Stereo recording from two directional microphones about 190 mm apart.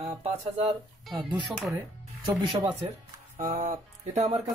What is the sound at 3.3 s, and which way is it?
Speech, 40° right (ahead or behind).